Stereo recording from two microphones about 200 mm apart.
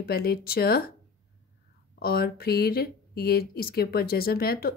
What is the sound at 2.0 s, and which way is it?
Speech, 50° left (ahead or behind).